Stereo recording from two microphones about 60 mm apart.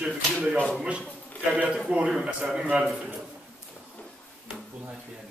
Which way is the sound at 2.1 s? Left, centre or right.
Centre.